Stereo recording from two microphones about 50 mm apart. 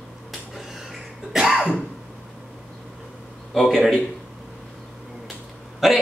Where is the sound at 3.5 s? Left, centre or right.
Centre.